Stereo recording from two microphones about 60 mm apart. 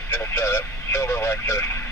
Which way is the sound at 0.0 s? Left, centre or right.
Left.